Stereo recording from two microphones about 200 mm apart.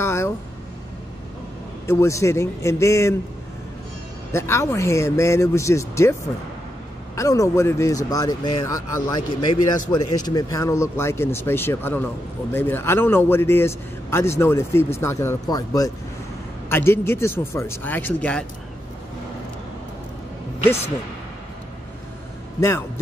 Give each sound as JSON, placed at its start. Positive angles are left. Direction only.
{"t": 0.0, "sound": "a sound", "side_deg": 15}
{"t": 1.9, "sound": "a man's voice", "side_deg": 15}
{"t": 4.3, "sound": "a man's voice", "side_deg": 15}
{"t": 7.2, "sound": "a man's voice", "side_deg": 15}
{"t": 20.6, "sound": "a man's voice", "side_deg": 10}
{"t": 22.6, "sound": "a man's voice", "side_deg": 10}